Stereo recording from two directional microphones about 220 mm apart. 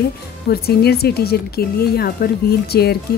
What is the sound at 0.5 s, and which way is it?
A woman's voice, 45° left (ahead or behind).